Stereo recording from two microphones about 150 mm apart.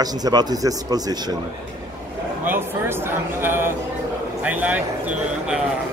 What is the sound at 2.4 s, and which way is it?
Speech, 15° right (ahead or behind).